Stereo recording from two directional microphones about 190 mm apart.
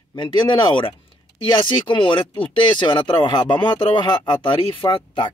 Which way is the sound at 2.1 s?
25° left (ahead or behind).